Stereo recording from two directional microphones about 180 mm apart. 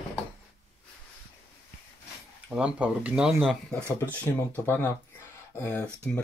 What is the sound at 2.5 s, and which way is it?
Speech, 5° right (ahead or behind).